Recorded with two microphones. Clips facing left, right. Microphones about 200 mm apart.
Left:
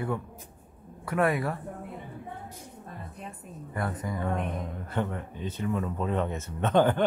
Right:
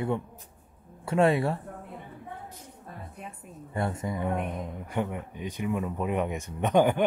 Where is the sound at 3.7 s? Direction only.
25° right (ahead or behind).